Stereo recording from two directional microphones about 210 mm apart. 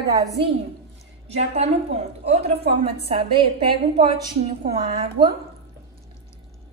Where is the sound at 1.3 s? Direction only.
30° right (ahead or behind).